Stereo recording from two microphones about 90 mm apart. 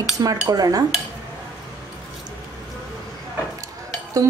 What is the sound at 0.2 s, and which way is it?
Speech, 45° right (ahead or behind).